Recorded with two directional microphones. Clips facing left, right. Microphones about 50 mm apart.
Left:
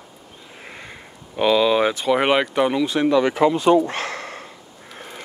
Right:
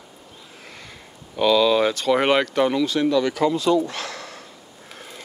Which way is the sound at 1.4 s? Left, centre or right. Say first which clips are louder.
Even; left.